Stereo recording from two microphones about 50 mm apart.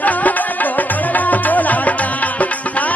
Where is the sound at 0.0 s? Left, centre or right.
Left.